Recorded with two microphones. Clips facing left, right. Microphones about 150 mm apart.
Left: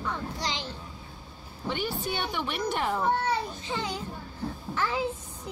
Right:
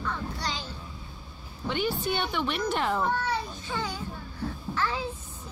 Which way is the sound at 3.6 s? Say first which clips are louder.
Even; 20° left (ahead or behind).